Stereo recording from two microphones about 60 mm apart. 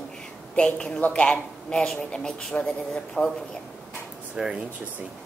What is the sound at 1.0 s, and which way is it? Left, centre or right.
Speech, left.